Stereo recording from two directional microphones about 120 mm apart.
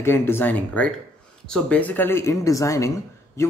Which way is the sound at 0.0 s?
20° left (ahead or behind).